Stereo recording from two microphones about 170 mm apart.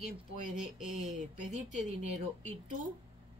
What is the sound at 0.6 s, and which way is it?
Speech, centre (ahead or behind).